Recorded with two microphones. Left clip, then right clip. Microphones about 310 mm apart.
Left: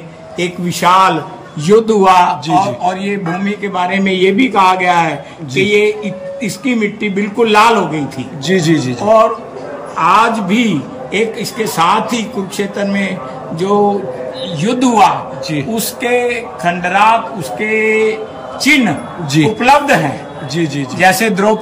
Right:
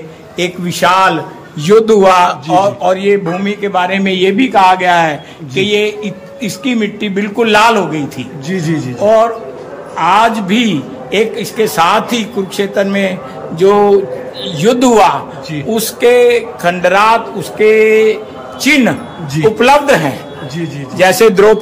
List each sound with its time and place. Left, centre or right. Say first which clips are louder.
0.4 s a man's voice: right 3 dB; centre
8.5 s speech: left 5 dB; centre
9.9 s a man's voice: right 1 dB; centre
19.4 s a man's voice: right 2 dB; centre
21.0 s a man's voice: right 4 dB; centre